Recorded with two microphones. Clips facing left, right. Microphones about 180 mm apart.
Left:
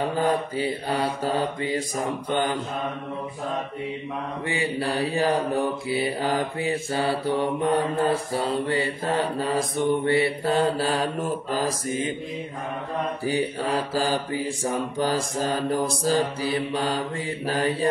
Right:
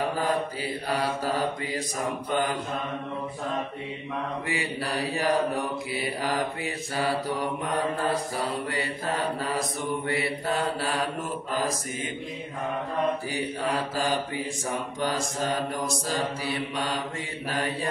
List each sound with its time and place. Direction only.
0.3 s mantra: 25° left (ahead or behind)
4.5 s mantra: 25° left (ahead or behind)
13.2 s mantra: 30° left (ahead or behind)